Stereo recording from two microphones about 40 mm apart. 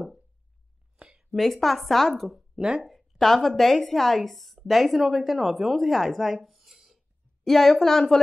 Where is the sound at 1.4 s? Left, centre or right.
Centre.